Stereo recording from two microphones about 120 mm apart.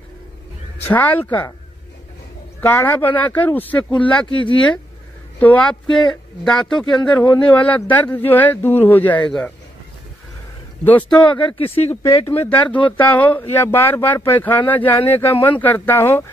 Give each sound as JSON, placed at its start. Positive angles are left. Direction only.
{"t": 0.7, "sound": "speech", "side_deg": 15}
{"t": 2.6, "sound": "speech", "side_deg": 15}
{"t": 5.4, "sound": "speech", "side_deg": 10}
{"t": 10.8, "sound": "a man's voice", "side_deg": 15}
{"t": 11.3, "sound": "speech", "side_deg": 45}
{"t": 12.3, "sound": "speech", "side_deg": 15}